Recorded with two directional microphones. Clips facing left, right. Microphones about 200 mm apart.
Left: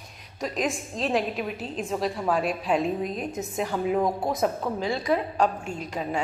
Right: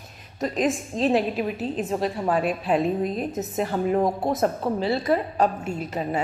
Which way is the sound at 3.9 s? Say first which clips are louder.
Right 2 dB; 25° right (ahead or behind).